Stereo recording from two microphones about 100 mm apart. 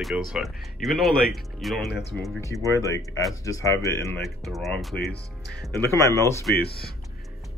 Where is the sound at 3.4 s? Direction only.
35° left (ahead or behind).